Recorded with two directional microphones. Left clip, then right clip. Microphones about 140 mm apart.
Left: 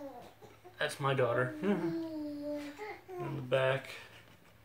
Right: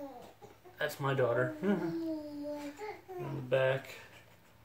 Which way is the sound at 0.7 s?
30° right (ahead or behind).